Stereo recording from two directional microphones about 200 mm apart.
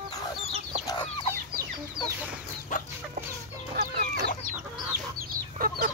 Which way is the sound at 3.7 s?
45° right (ahead or behind).